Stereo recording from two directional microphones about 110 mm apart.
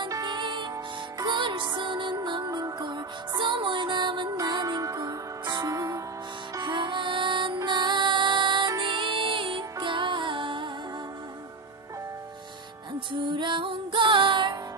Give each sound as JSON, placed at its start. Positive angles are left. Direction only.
{"t": 0.1, "sound": "music", "side_deg": -40}
{"t": 6.6, "sound": "music", "side_deg": -45}
{"t": 13.1, "sound": "music", "side_deg": -50}